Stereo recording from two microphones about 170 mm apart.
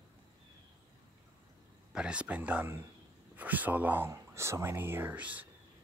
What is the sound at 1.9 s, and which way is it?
Speech, 5° right (ahead or behind).